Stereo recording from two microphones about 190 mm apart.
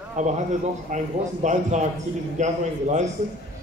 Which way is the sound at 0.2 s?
40° right (ahead or behind).